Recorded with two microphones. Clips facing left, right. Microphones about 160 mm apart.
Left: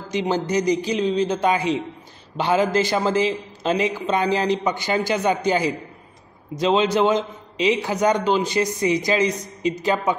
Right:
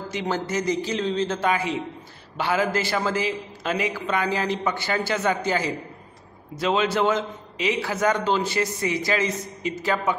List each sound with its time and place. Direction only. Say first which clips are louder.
0.1 s a man's voice: left 6 dB; 20° left (ahead or behind)